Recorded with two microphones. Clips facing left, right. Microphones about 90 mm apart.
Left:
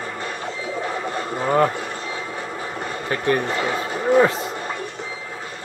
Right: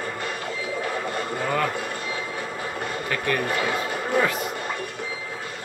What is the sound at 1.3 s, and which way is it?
Speech, 25° left (ahead or behind).